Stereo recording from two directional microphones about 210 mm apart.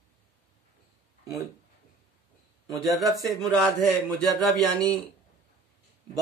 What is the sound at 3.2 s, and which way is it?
Speech, centre (ahead or behind).